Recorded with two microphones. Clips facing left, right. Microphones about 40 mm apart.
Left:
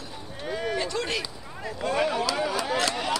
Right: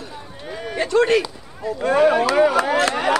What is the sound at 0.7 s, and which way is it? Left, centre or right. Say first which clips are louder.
Speech: right 17 dB; right.